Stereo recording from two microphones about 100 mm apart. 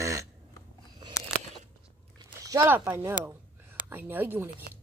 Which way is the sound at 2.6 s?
20° right (ahead or behind).